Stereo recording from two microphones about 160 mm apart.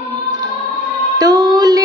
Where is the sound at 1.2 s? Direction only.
25° right (ahead or behind).